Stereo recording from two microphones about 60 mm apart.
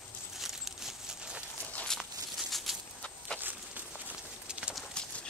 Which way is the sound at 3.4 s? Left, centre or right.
Right.